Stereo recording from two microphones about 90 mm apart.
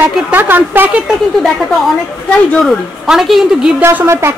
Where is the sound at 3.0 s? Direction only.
5° right (ahead or behind).